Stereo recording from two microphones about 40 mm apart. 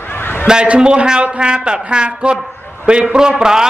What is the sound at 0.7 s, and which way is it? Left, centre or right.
A man's voice, right.